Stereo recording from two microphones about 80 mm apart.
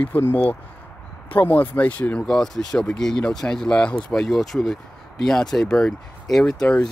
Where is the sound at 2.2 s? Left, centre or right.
Centre.